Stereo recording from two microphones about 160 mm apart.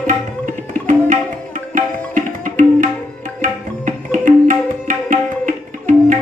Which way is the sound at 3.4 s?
55° right (ahead or behind).